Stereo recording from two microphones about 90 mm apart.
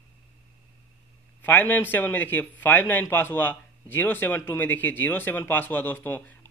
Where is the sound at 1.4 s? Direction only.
20° left (ahead or behind).